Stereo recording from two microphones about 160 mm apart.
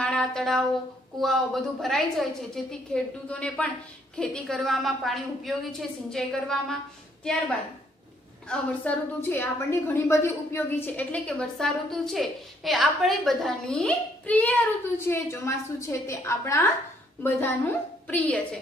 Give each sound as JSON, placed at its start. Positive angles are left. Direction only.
{"t": 0.0, "sound": "a sound", "side_deg": 5}
{"t": 1.2, "sound": "a woman's voice", "side_deg": 0}
{"t": 8.5, "sound": "a woman's voice", "side_deg": 10}